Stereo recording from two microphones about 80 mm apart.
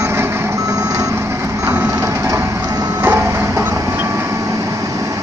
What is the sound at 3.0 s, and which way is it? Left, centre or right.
Printer, right.